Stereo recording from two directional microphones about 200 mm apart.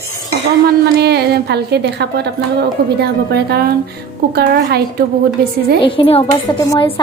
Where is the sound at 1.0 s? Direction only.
55° right (ahead or behind).